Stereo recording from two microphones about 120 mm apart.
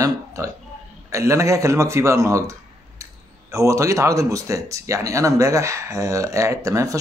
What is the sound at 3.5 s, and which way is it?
Speech, 25° right (ahead or behind).